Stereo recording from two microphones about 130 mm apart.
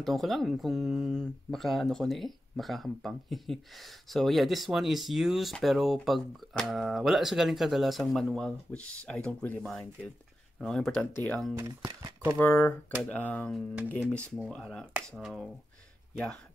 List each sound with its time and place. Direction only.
0.0 s speech: centre (ahead or behind)
11.5 s speech: 25° right (ahead or behind)
12.4 s speech: 10° left (ahead or behind)
14.5 s speech: 5° left (ahead or behind)